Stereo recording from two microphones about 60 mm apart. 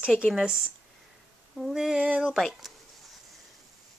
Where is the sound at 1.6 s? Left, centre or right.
Centre.